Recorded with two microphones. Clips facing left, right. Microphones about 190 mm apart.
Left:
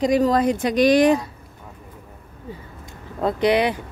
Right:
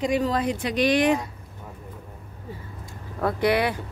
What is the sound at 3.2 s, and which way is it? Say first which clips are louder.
Speech: left 3 dB; 20° left (ahead or behind).